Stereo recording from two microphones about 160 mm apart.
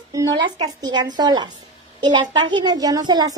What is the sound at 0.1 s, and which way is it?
A woman's voice, 25° right (ahead or behind).